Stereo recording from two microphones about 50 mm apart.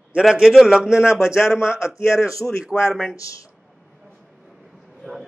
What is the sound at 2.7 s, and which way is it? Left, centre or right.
Speech, centre.